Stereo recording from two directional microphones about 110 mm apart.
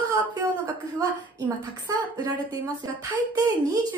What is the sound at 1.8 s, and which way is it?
Speech, 35° right (ahead or behind).